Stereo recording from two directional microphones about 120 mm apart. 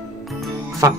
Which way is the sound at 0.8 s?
25° right (ahead or behind).